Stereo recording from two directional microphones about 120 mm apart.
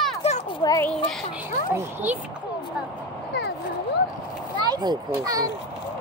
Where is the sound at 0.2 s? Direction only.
60° left (ahead or behind).